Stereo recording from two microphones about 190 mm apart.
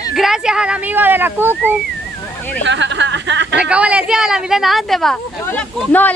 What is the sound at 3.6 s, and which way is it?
A woman's voice, 5° right (ahead or behind).